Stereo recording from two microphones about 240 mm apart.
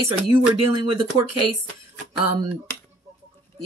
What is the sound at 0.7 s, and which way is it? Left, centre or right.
Speech, centre.